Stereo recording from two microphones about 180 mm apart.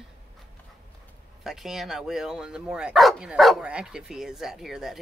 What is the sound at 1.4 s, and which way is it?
Speech, centre (ahead or behind).